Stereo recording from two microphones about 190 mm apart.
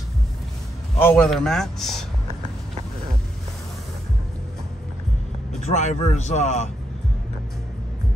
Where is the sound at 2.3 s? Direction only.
30° right (ahead or behind).